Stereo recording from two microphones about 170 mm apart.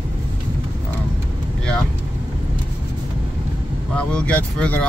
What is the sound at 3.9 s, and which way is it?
Speech, 5° left (ahead or behind).